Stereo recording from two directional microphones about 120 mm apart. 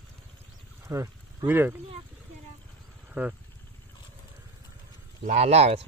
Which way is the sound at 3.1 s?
10° right (ahead or behind).